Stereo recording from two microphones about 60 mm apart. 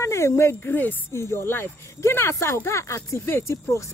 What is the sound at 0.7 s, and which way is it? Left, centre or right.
Speech, left.